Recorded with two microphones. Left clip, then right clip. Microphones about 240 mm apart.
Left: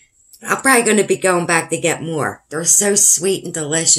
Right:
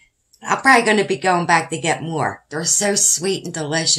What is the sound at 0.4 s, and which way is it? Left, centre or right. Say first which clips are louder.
Speech: right 1 dB; centre.